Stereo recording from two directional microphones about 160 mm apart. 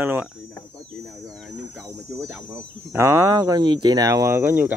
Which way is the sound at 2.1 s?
15° right (ahead or behind).